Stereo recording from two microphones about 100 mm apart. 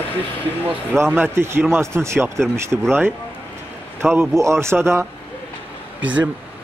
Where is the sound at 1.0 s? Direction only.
20° right (ahead or behind).